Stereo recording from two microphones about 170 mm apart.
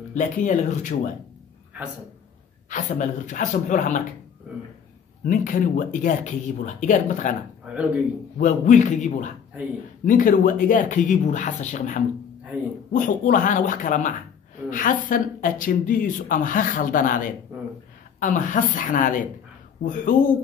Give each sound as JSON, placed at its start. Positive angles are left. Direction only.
{"t": 0.1, "sound": "speech", "side_deg": 50}
{"t": 2.7, "sound": "speech", "side_deg": 45}
{"t": 5.2, "sound": "speech", "side_deg": 50}
{"t": 7.6, "sound": "speech", "side_deg": -10}
{"t": 8.4, "sound": "a woman's voice", "side_deg": 45}